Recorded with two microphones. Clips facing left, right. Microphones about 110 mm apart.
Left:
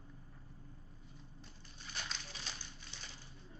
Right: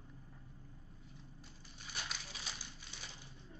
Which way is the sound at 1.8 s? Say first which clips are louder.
Even; 10° right (ahead or behind).